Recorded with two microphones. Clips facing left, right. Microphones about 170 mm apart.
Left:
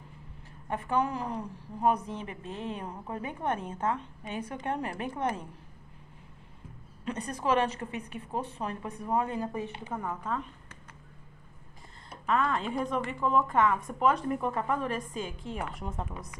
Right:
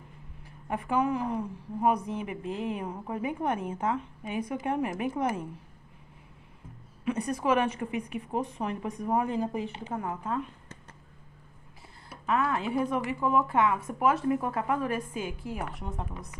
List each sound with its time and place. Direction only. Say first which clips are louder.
0.7 s a woman's voice: right 2 dB; 10° right (ahead or behind)
7.1 s a woman's voice: right 3 dB; 10° right (ahead or behind)
12.1 s a woman's voice: even; 10° right (ahead or behind)